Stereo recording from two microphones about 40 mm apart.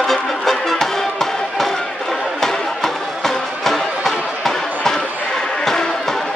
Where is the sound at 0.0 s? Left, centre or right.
Centre.